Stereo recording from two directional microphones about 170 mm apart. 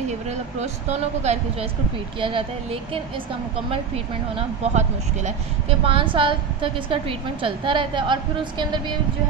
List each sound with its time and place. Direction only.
0.3 s speech: 40° right (ahead or behind)